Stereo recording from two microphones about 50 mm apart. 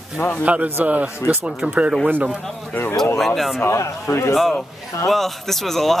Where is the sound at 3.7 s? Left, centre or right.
Left.